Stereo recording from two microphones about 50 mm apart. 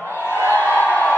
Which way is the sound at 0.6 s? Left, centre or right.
Left.